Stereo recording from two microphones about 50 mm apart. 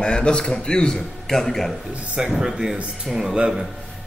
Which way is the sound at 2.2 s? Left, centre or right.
Centre.